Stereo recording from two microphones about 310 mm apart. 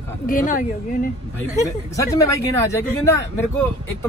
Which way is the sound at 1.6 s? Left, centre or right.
Centre.